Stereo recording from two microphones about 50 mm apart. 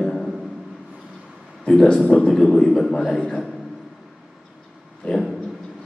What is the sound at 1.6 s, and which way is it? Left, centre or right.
A man's voice, centre.